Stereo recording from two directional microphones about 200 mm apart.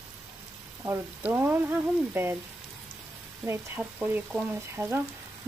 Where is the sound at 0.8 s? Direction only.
10° right (ahead or behind).